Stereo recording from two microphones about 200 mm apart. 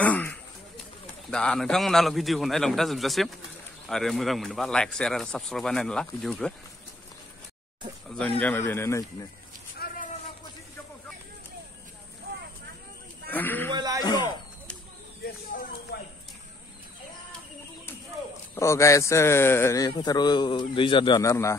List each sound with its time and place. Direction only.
0.0 s a sound: 5° left (ahead or behind)
1.3 s speech: 5° left (ahead or behind)
8.4 s a man's voice: 10° left (ahead or behind)
9.8 s a sound: 50° left (ahead or behind)
13.3 s a man's voice: 10° left (ahead or behind)
13.7 s speech: 20° right (ahead or behind)
14.0 s a man's voice: 20° left (ahead or behind)
15.2 s a sound: 50° left (ahead or behind)
18.5 s a man's voice: 15° left (ahead or behind)